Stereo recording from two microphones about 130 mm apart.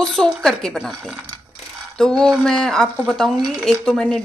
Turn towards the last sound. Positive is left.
turn(degrees=5)  # may be behind; listen again after turning